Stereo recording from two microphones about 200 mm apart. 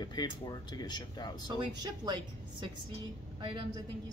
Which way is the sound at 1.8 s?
20° right (ahead or behind).